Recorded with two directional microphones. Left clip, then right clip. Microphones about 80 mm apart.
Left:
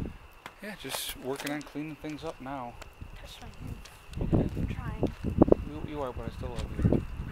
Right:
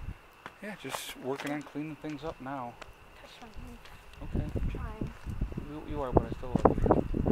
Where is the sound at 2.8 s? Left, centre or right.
Left.